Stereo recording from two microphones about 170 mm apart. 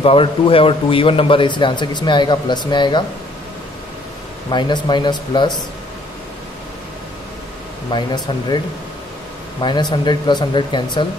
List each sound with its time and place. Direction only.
0.0 s a man's voice: 35° left (ahead or behind)
4.5 s a man's voice: 25° left (ahead or behind)
7.9 s a man's voice: 25° left (ahead or behind)
9.6 s a man's voice: 25° left (ahead or behind)